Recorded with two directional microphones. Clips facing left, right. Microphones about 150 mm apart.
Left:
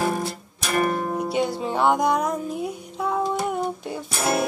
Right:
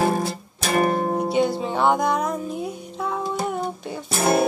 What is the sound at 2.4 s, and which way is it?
Music, 10° left (ahead or behind).